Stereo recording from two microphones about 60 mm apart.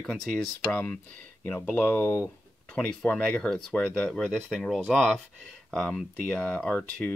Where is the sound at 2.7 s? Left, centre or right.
Centre.